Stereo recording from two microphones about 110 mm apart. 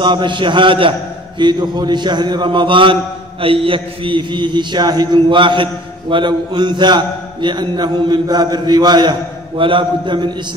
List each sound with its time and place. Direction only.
0.0 s a man's voice: 45° right (ahead or behind)